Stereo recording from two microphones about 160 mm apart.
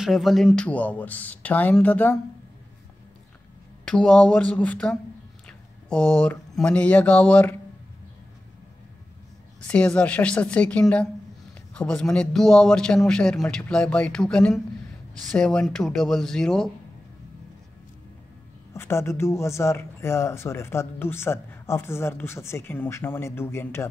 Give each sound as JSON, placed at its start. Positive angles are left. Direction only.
{"t": 0.0, "sound": "speech", "side_deg": 0}
{"t": 3.8, "sound": "speech", "side_deg": 5}
{"t": 9.7, "sound": "a man's voice", "side_deg": 10}
{"t": 18.7, "sound": "speech", "side_deg": 15}